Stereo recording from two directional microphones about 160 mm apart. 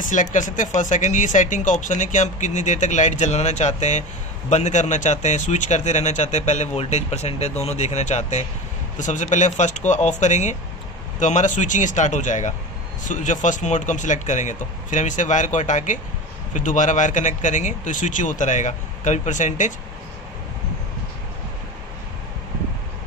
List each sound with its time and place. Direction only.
0.0 s speech: 50° left (ahead or behind)